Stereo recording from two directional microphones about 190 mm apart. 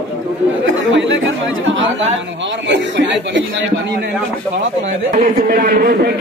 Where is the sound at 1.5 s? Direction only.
90° right.